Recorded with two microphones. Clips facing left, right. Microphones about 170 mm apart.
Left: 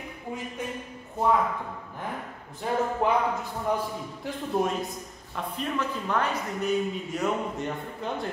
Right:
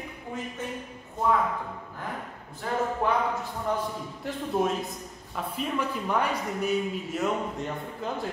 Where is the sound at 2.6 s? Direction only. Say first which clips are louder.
Left 2 dB; 20° left (ahead or behind).